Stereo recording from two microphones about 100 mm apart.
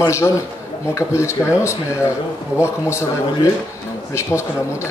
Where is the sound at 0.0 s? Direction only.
30° left (ahead or behind).